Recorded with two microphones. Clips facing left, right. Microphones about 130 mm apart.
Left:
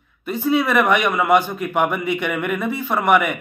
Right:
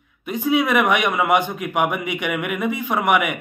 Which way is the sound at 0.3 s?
15° right (ahead or behind).